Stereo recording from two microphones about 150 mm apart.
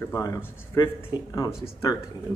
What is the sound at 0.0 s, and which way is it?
Speech, 20° left (ahead or behind).